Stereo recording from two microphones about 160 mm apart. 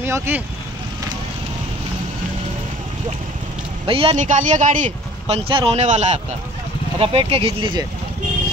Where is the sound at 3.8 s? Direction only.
35° right (ahead or behind).